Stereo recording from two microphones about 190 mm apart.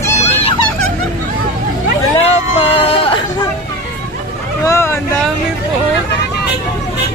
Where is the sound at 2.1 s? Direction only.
30° left (ahead or behind).